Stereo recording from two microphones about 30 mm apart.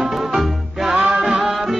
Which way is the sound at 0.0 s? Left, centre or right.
Centre.